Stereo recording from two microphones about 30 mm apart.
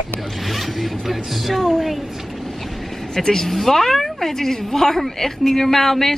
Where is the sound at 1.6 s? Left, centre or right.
Centre.